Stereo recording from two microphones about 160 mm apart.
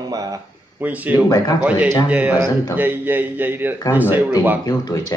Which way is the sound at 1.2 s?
25° left (ahead or behind).